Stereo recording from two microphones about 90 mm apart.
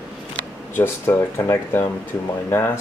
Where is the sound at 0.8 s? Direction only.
25° left (ahead or behind).